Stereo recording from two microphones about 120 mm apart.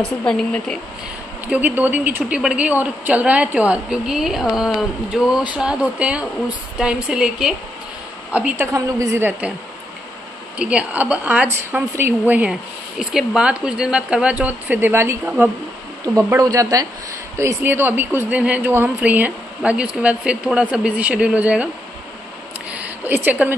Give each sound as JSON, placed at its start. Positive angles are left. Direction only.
{"t": 0.2, "sound": "speech", "side_deg": 10}
{"t": 1.5, "sound": "a woman's voice", "side_deg": -15}
{"t": 8.7, "sound": "a woman's voice", "side_deg": -25}
{"t": 10.6, "sound": "a woman's voice", "side_deg": -10}
{"t": 22.7, "sound": "a sound", "side_deg": -15}